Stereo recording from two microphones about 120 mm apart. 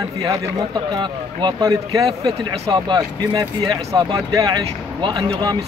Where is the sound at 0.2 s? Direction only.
30° right (ahead or behind).